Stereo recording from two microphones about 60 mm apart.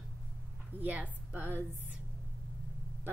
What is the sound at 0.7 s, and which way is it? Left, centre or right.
Speech, right.